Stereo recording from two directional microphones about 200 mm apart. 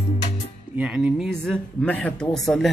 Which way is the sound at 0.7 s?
5° right (ahead or behind).